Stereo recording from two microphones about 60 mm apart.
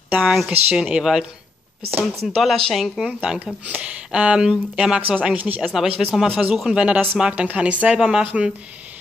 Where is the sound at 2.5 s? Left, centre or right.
Centre.